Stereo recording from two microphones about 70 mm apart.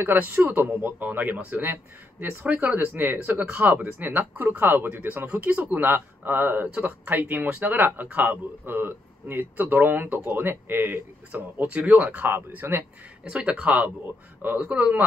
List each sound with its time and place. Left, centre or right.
0.2 s a man's voice: right
11.5 s a man's voice: centre
13.2 s a man's voice: centre